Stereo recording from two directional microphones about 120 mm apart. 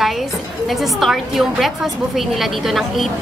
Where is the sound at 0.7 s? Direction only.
Centre (ahead or behind).